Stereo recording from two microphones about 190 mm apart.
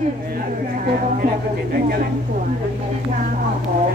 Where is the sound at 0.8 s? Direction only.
50° right (ahead or behind).